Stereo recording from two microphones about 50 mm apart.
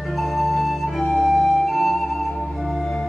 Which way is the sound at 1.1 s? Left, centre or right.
Centre.